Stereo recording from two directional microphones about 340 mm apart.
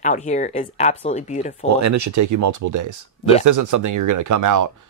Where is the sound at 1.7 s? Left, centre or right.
Right.